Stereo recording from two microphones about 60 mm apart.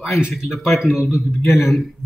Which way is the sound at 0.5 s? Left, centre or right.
Centre.